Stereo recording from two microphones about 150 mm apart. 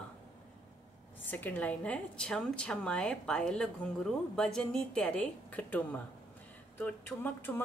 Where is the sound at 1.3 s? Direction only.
10° left (ahead or behind).